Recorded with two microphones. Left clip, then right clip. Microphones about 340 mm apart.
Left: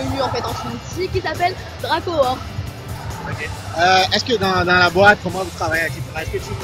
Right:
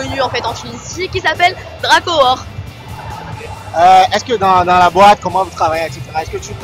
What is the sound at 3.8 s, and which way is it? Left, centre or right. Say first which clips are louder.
Speech: right 7 dB; centre.